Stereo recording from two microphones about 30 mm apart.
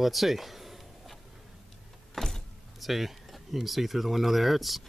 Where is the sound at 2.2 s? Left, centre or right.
Centre.